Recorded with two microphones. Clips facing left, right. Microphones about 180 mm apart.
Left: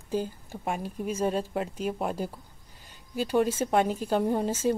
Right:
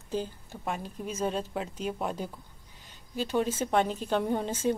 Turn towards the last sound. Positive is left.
turn(degrees=5)  # may be behind; listen again after turning